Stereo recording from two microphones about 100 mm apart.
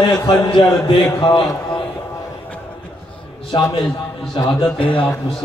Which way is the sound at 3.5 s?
45° left (ahead or behind).